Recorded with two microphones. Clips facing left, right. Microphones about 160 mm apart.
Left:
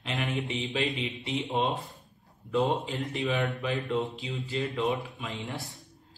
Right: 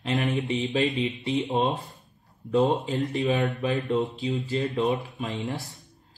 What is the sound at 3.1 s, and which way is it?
Speech, 40° right (ahead or behind).